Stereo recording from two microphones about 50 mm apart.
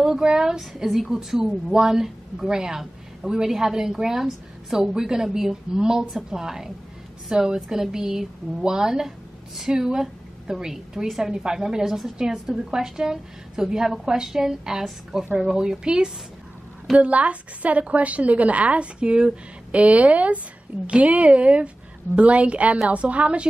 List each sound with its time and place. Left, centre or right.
0.0 s a woman's voice: centre